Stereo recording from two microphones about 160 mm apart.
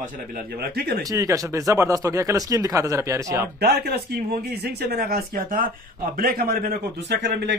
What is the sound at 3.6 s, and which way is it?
Speech, 85° right.